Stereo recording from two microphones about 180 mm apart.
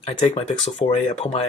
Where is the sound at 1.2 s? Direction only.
35° left (ahead or behind).